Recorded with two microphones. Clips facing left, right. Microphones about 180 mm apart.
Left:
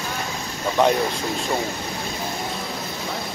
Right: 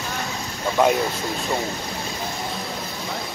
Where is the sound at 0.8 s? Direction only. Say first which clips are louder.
Even; 5° right (ahead or behind).